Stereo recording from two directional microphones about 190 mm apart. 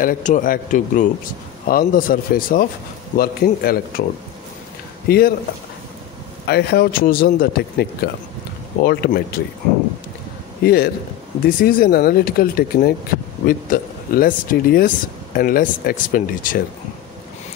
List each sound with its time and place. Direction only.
0.0 s a man's voice: 45° left (ahead or behind)
5.0 s speech: 55° left (ahead or behind)
6.4 s a man's voice: 60° left (ahead or behind)
10.6 s a man's voice: 55° left (ahead or behind)